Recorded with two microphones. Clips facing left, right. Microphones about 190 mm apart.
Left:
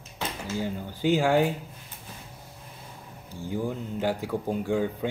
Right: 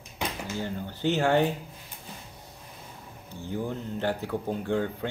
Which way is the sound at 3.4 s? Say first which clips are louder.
Left 2 dB; 10° left (ahead or behind).